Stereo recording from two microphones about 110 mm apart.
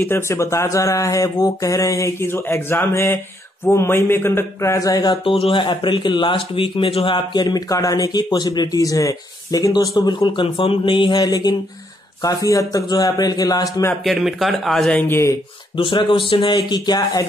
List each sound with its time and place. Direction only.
0.0 s a man's voice: 25° left (ahead or behind); by 7.2 s 55° left (ahead or behind)
7.3 s speech: 40° left (ahead or behind)
11.1 s speech: 35° left (ahead or behind)
14.0 s speech: centre (ahead or behind)
15.0 s speech: 20° left (ahead or behind)
15.7 s a man's voice: 50° left (ahead or behind)
16.5 s speech: 40° left (ahead or behind)